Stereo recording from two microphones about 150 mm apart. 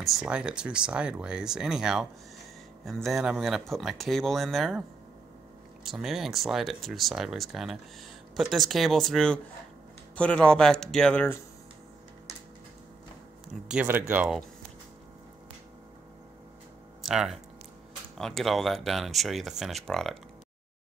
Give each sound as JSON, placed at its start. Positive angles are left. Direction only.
{"t": 0.0, "sound": "speech", "side_deg": -5}
{"t": 5.9, "sound": "speech", "side_deg": 0}
{"t": 13.5, "sound": "speech", "side_deg": -5}
{"t": 17.0, "sound": "speech", "side_deg": 0}